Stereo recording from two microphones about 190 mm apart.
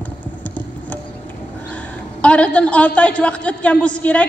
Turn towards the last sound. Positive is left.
turn(degrees=5)  # may be behind; listen again after turning